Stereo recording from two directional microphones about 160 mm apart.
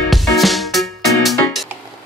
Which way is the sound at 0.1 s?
Centre (ahead or behind).